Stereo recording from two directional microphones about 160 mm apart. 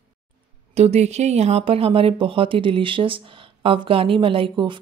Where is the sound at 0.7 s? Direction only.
40° right (ahead or behind).